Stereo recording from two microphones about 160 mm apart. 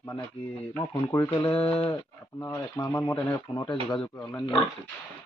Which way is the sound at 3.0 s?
10° left (ahead or behind).